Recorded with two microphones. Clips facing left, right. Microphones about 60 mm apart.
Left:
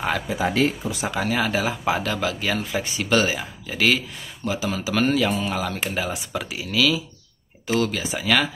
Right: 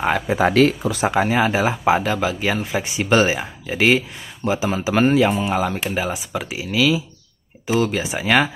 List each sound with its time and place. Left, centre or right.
0.4 s speech: right
1.0 s speech: right